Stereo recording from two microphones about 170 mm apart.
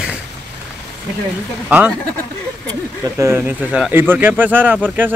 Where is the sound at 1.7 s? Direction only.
10° right (ahead or behind).